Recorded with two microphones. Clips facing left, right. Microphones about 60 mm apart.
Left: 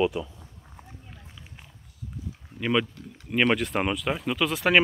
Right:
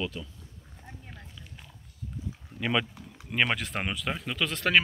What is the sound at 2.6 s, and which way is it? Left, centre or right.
Speech, centre.